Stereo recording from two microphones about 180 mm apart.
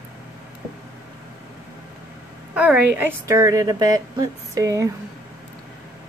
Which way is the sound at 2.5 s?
5° right (ahead or behind).